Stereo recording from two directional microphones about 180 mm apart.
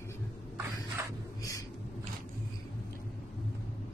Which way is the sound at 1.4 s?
20° left (ahead or behind).